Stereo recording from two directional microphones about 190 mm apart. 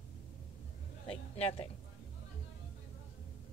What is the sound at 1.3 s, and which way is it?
Speech, 30° left (ahead or behind).